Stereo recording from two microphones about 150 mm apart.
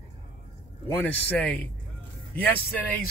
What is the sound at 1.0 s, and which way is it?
Speech, 10° left (ahead or behind).